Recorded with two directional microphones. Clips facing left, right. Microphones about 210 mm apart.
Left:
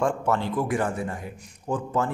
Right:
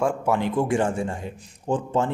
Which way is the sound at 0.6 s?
25° right (ahead or behind).